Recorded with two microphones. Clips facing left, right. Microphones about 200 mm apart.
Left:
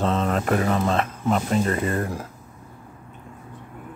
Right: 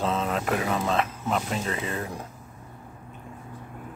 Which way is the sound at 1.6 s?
50° left (ahead or behind).